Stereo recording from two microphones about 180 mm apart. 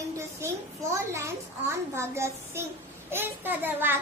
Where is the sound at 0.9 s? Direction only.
15° right (ahead or behind).